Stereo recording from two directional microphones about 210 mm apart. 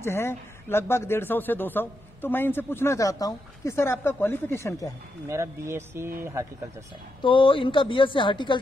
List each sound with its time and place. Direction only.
0.0 s speech: 10° left (ahead or behind)
5.3 s speech: 15° right (ahead or behind)
7.2 s a woman's voice: 25° left (ahead or behind)